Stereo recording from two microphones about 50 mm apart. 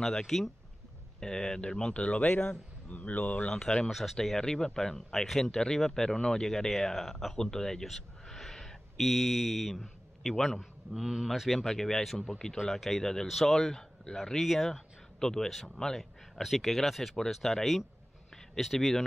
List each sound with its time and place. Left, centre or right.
0.0 s a man's voice: centre; by 3.4 s left
3.4 s speech: centre
3.9 s speech: centre
10.6 s a man's voice: centre